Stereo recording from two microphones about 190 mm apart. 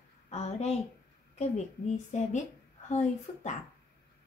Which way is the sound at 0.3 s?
35° left (ahead or behind).